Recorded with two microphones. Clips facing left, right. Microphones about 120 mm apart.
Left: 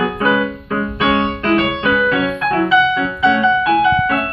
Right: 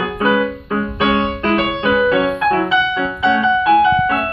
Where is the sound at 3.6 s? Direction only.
25° right (ahead or behind).